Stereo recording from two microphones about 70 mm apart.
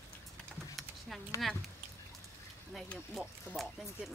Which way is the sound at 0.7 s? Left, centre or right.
Centre.